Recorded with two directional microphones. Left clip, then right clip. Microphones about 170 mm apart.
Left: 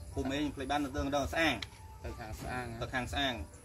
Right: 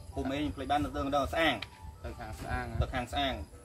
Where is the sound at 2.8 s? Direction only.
20° right (ahead or behind).